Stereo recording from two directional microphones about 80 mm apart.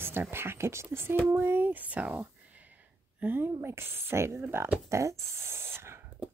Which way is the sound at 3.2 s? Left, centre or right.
Right.